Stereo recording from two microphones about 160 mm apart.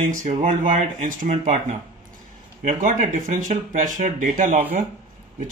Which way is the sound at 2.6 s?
50° right (ahead or behind).